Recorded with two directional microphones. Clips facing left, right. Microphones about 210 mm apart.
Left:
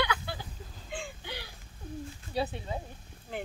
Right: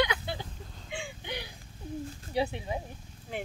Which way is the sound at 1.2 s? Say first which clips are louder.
Right 3 dB; 20° right (ahead or behind).